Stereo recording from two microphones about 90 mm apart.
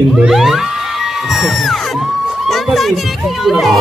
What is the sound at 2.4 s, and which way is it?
Music, centre (ahead or behind).